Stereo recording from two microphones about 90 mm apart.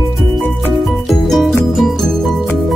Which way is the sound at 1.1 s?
5° left (ahead or behind).